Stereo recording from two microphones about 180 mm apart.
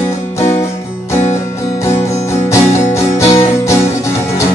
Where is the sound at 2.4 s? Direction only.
15° left (ahead or behind).